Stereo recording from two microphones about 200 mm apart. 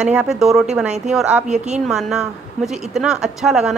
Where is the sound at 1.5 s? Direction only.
35° right (ahead or behind).